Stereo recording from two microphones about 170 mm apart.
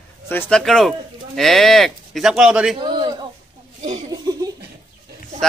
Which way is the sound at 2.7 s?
30° right (ahead or behind).